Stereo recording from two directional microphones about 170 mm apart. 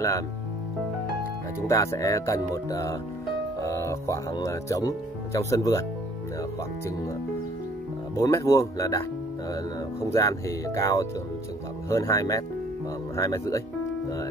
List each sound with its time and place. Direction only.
1.7 s speech: 20° left (ahead or behind)
8.2 s speech: 20° left (ahead or behind)
10.1 s speech: 20° left (ahead or behind)